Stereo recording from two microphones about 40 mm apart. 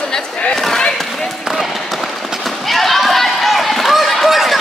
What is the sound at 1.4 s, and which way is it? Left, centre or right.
Run, centre.